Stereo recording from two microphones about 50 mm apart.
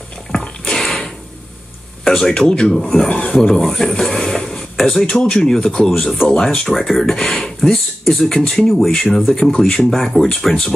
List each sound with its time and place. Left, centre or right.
0.7 s a sound: centre
2.0 s speech: centre
2.7 s speech: centre
3.1 s filing: left
3.3 s speech: centre
5.0 s speech: centre